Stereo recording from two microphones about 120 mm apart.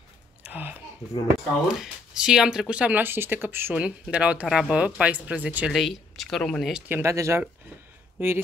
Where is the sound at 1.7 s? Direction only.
5° right (ahead or behind).